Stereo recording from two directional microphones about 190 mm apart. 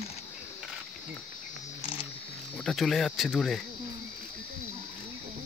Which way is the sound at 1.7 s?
30° left (ahead or behind).